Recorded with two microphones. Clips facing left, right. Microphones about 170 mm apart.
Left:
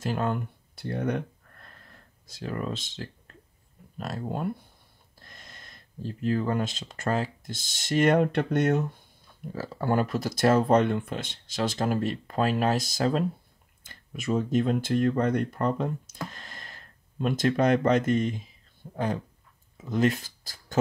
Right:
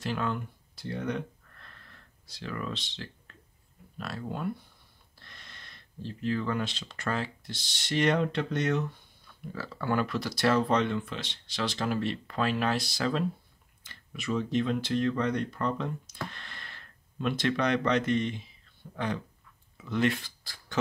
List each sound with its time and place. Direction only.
0.0 s a sound: 45° left (ahead or behind)
4.0 s speech: 45° left (ahead or behind)
9.5 s speech: 40° left (ahead or behind)